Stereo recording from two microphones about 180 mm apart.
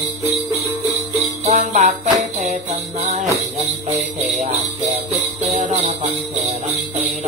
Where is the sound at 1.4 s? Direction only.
40° right (ahead or behind).